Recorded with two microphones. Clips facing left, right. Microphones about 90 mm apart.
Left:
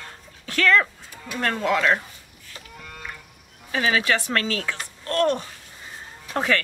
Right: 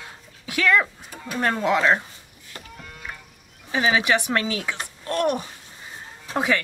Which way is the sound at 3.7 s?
20° right (ahead or behind).